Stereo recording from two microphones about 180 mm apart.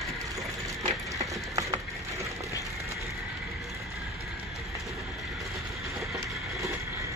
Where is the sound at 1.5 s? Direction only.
15° right (ahead or behind).